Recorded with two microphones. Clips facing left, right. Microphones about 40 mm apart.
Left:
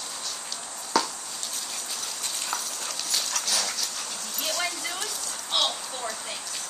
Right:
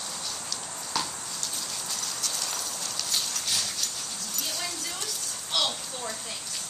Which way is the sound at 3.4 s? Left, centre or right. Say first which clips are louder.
Left 2 dB; left.